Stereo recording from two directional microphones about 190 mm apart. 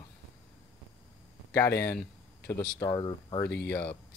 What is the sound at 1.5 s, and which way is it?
Speech, 15° left (ahead or behind).